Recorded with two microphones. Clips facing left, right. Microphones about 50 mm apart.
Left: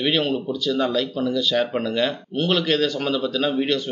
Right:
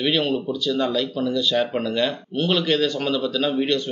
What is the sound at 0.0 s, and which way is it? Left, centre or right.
Speech, centre.